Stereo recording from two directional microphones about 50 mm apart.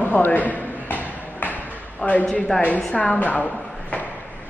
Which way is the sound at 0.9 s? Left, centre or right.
Left.